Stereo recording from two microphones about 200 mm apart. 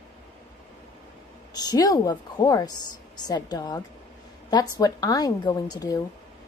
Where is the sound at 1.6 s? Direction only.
20° left (ahead or behind).